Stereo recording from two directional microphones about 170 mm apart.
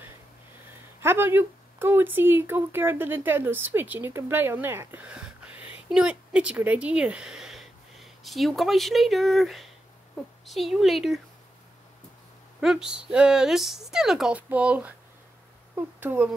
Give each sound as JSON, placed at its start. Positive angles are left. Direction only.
{"t": 1.0, "sound": "a woman's voice", "side_deg": -10}
{"t": 12.5, "sound": "speech", "side_deg": -5}